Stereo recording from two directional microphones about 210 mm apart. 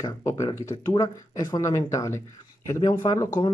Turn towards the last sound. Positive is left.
turn(degrees=15)  # may be behind; listen again after turning